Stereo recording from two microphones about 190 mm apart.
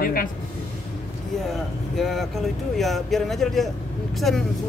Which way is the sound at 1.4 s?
Centre (ahead or behind).